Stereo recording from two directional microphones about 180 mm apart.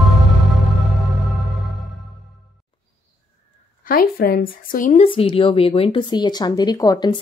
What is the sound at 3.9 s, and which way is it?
Speech, 55° left (ahead or behind).